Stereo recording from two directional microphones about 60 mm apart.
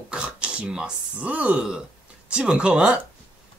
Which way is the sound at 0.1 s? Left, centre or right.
Centre.